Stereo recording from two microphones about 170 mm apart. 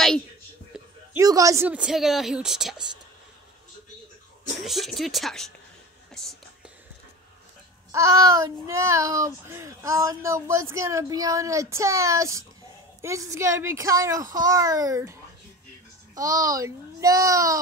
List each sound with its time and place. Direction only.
0.7 s a sound: 5° right (ahead or behind)
1.1 s speech: 20° right (ahead or behind)
1.7 s speech: 5° right (ahead or behind)
4.6 s speech: centre (ahead or behind)
6.1 s whispering: 5° left (ahead or behind)
7.9 s speech: 20° right (ahead or behind)
16.2 s speech: 20° right (ahead or behind)